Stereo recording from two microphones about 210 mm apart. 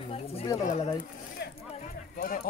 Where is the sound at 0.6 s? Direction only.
30° left (ahead or behind).